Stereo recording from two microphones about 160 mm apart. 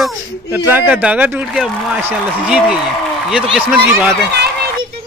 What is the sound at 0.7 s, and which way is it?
Speech, 10° right (ahead or behind).